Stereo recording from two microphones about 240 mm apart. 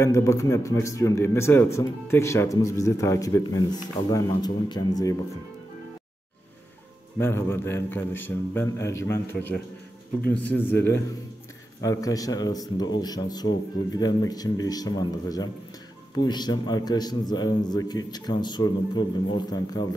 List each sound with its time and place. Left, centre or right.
0.0 s a man's voice: centre
7.2 s a man's voice: centre